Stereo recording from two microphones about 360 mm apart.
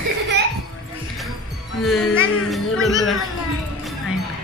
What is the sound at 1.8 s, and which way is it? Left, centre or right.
Speech, centre.